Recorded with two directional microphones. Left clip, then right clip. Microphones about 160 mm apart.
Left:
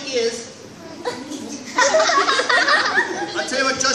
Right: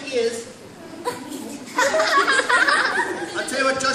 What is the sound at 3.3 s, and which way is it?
Speech, 5° right (ahead or behind).